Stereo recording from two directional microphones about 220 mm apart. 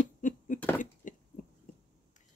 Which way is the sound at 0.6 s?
10° left (ahead or behind).